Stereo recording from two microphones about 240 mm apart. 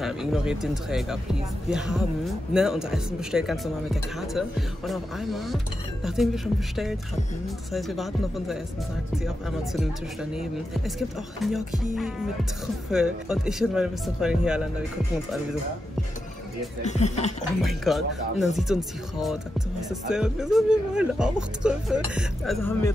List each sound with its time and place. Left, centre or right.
0.0 s speech: centre
10.3 s speech: centre
16.8 s speech: left
17.6 s speech: centre
19.9 s speech: centre
22.7 s a man's voice: centre